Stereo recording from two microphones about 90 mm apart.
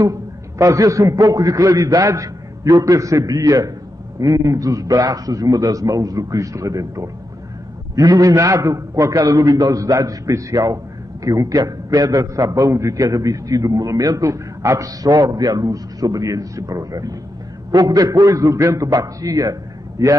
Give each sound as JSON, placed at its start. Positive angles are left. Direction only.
{"t": 0.0, "sound": "a man's voice", "side_deg": -35}
{"t": 18.5, "sound": "a man's voice", "side_deg": -35}